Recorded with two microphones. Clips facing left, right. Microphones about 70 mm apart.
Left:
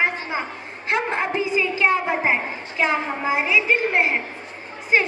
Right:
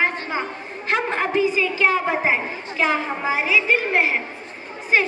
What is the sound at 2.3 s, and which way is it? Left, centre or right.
A woman's voice, centre.